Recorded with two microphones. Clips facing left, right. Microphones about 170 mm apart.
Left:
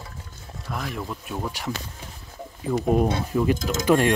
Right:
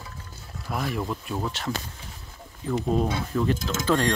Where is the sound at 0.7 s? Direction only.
5° right (ahead or behind).